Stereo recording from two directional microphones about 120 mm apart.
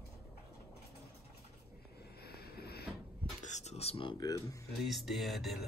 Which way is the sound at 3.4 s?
75° left (ahead or behind).